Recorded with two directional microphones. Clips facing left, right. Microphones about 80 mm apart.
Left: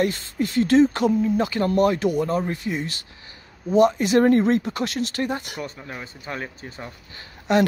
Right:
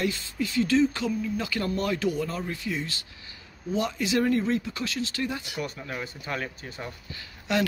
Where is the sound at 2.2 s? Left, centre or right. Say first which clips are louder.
Left 7 dB; left.